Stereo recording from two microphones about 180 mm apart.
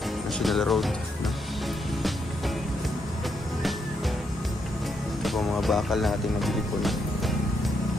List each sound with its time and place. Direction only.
0.4 s speech: centre (ahead or behind)
5.2 s speech: centre (ahead or behind)